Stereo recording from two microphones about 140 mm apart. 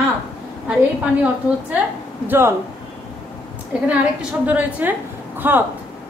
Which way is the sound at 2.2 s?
15° right (ahead or behind).